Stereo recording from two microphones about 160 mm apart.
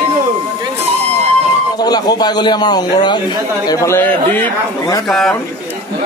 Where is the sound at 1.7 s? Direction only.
25° left (ahead or behind).